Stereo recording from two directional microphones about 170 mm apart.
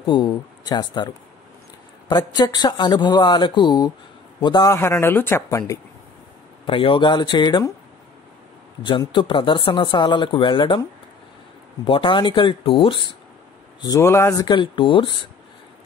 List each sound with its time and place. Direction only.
0.0 s speech: 25° left (ahead or behind)
6.6 s speech: 30° left (ahead or behind)
8.8 s speech: 25° left (ahead or behind)
11.8 s speech: 30° left (ahead or behind)